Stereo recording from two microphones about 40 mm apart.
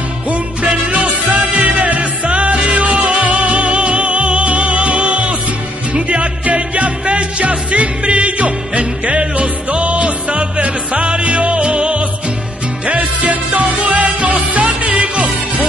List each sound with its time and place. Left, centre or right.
0.3 s music: right
12.8 s music: right